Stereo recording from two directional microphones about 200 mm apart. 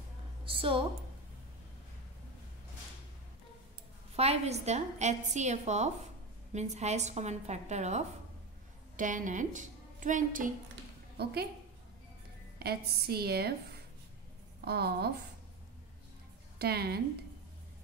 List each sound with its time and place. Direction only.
0.5 s a woman's voice: 25° right (ahead or behind)
4.2 s a woman's voice: 30° right (ahead or behind)
12.5 s a woman's voice: 50° right (ahead or behind)
14.6 s a woman's voice: 55° right (ahead or behind)
16.5 s a woman's voice: 50° right (ahead or behind)